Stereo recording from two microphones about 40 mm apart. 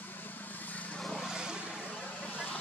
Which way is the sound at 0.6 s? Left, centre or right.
Left.